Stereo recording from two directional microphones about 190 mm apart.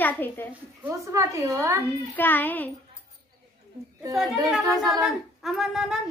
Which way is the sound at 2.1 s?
10° left (ahead or behind).